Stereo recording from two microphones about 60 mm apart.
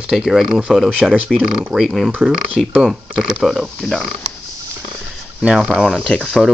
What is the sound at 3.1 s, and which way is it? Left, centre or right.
Speech, centre.